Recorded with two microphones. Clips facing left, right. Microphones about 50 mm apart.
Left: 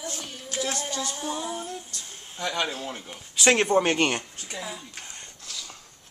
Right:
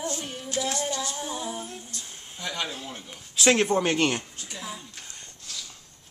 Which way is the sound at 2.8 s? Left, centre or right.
Left.